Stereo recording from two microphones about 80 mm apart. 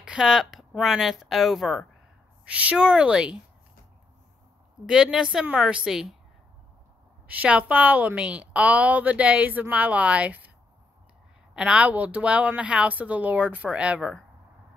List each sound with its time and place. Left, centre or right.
0.0 s speech: centre
2.4 s speech: centre
4.8 s speech: centre
7.2 s a woman's voice: centre
11.5 s speech: centre